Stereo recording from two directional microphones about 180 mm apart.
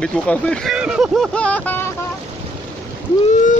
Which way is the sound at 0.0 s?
5° left (ahead or behind).